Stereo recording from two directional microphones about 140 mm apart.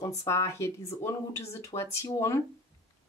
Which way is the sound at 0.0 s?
20° left (ahead or behind).